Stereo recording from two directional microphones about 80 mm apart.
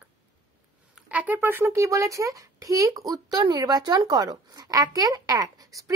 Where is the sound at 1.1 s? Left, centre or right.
Right.